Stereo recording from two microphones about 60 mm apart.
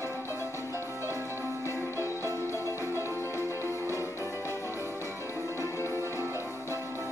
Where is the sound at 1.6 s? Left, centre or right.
Left.